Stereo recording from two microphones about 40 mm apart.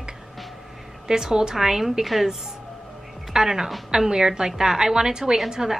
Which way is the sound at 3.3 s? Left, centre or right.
Centre.